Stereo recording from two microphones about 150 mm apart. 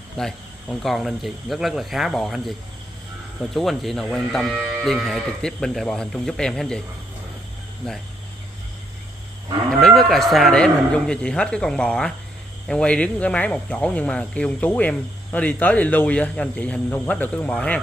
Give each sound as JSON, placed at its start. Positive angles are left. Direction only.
{"t": 0.2, "sound": "speech", "side_deg": 0}
{"t": 3.5, "sound": "speech", "side_deg": 0}
{"t": 9.7, "sound": "speech", "side_deg": 5}